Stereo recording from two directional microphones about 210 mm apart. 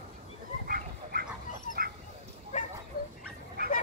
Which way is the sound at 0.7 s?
45° right (ahead or behind).